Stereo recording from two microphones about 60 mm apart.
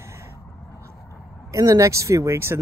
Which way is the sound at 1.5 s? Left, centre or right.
Right.